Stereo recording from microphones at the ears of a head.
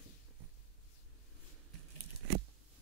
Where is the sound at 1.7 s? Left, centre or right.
Right.